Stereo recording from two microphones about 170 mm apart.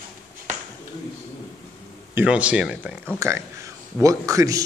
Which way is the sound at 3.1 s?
15° right (ahead or behind).